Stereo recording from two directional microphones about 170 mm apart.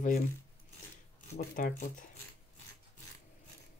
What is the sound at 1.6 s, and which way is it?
Speech, 50° left (ahead or behind).